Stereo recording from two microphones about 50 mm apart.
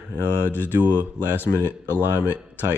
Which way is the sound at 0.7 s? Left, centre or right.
Right.